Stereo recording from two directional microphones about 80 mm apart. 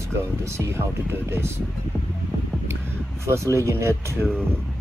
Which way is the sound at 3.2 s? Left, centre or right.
Right.